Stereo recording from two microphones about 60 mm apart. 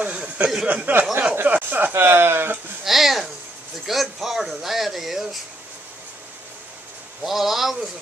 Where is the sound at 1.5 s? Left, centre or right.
Right.